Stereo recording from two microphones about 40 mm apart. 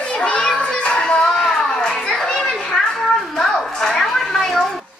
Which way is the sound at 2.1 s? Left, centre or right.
Centre.